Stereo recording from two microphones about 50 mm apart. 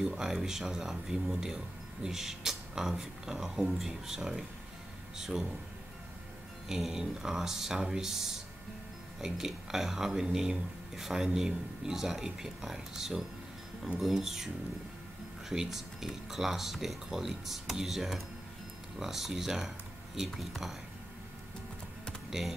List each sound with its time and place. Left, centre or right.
0.0 s speech: centre
6.7 s speech: centre
9.2 s speech: centre
15.5 s speech: centre